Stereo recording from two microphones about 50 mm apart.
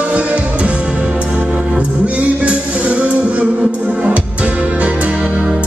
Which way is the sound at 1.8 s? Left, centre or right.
Right.